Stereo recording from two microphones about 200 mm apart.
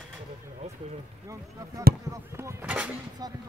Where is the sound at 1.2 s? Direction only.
15° right (ahead or behind).